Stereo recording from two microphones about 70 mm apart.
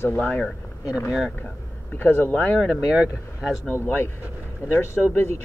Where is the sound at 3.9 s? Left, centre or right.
Left.